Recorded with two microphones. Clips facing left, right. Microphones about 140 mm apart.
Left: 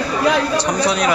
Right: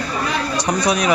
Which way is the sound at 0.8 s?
15° right (ahead or behind).